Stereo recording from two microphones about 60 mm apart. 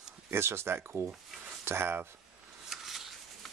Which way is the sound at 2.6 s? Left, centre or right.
Centre.